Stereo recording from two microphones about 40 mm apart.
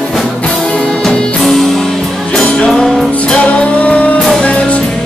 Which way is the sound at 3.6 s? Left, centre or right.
Left.